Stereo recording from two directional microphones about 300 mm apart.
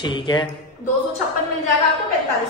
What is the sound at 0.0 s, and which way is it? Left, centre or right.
Speech, centre.